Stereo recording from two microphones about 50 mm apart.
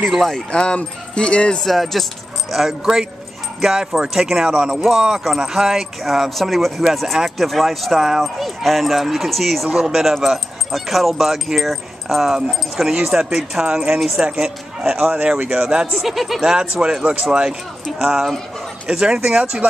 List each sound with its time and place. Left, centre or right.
0.5 s speech: centre
1.6 s speech: centre
2.8 s speech: centre
9.7 s speech: centre
12.4 s speech: centre
13.9 s speech: centre
14.2 s speech: centre
15.3 s speech: right
15.9 s speech: centre